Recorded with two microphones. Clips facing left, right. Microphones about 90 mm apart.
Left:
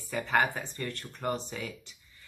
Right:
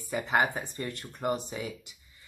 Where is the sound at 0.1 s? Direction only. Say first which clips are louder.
Right 1 dB; 20° right (ahead or behind).